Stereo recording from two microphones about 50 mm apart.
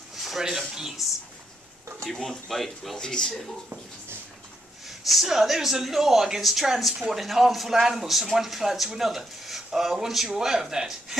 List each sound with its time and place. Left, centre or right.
0.1 s speech: centre
2.1 s speech: centre
2.4 s speech: centre
3.0 s speech: centre
4.8 s speech: centre